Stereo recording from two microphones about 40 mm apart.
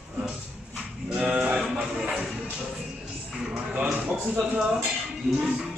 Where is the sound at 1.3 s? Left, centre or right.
Right.